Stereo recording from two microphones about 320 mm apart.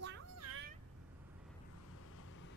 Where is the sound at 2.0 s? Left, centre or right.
Left.